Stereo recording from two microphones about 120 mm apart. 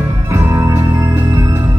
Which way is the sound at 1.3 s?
25° right (ahead or behind).